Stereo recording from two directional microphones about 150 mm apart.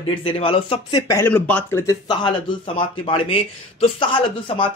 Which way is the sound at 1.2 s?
10° left (ahead or behind).